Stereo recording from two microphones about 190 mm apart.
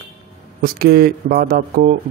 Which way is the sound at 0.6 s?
55° right (ahead or behind).